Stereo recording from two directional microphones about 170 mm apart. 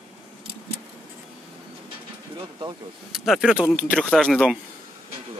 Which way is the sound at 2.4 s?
30° right (ahead or behind).